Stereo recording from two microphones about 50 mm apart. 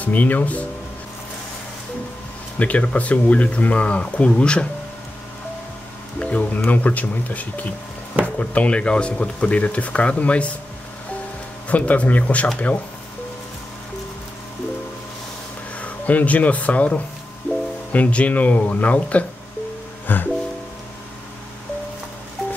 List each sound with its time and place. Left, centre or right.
0.0 s speech: left
2.6 s speech: left
6.1 s music: left
6.5 s speech: left
11.7 s speech: left
15.8 s speech: left
20.1 s speech: left